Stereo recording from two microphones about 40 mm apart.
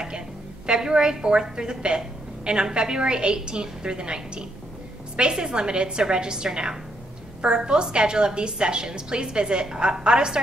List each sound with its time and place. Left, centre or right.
0.7 s a woman's voice: right